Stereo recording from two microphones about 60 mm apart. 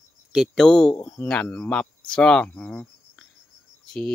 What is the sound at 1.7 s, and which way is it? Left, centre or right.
Speech, centre.